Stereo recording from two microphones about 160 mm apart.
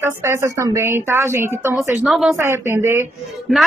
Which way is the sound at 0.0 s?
15° right (ahead or behind).